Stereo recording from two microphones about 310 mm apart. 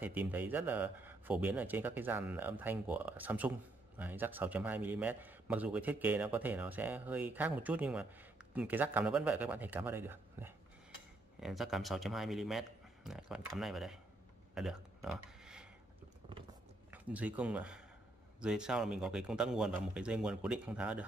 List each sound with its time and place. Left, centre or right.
0.0 s a man's voice: centre
14.5 s a sound: centre
16.9 s a man's voice: centre